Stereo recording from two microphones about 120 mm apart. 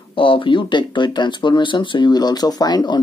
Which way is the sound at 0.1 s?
45° left (ahead or behind).